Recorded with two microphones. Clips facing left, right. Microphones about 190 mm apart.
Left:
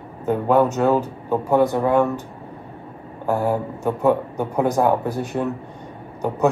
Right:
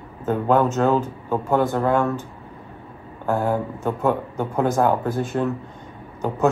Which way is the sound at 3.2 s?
5° left (ahead or behind).